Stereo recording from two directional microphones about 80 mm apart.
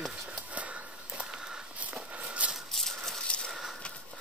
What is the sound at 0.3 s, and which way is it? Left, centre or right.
Walk, centre.